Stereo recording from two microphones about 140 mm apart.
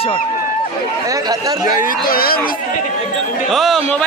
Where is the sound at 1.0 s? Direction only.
25° right (ahead or behind).